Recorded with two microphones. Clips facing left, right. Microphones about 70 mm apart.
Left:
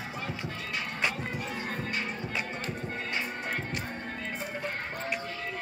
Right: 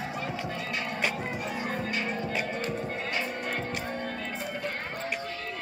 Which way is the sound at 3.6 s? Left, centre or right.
Right.